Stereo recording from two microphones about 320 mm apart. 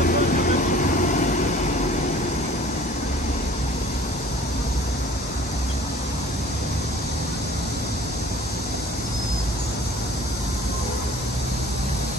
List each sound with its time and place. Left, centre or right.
0.0 s vehicle: left